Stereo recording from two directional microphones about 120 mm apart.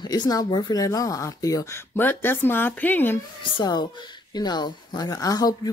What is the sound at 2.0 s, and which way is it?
Speech, 15° left (ahead or behind).